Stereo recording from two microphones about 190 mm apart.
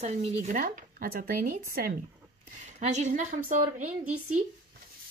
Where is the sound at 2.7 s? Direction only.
35° right (ahead or behind).